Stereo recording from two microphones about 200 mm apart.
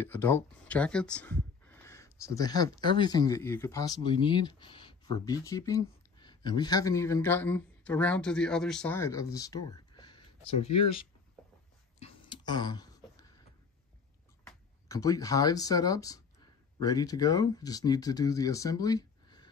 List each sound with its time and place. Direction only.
0.0 s speech: 10° left (ahead or behind); by 11.1 s 30° left (ahead or behind)
12.0 s a sound: 25° left (ahead or behind)
14.9 s speech: 15° left (ahead or behind)